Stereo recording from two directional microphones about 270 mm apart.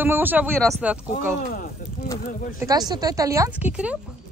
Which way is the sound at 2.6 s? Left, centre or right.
Centre.